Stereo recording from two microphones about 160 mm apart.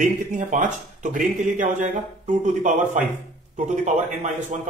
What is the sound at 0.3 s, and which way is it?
A man's voice, 50° right (ahead or behind).